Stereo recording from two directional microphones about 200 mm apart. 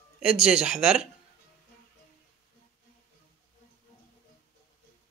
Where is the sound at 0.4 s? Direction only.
5° right (ahead or behind).